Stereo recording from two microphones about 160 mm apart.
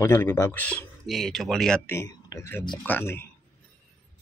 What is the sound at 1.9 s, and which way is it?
Speech, 20° left (ahead or behind).